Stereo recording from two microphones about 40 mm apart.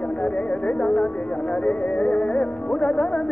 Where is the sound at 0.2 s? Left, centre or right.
Left.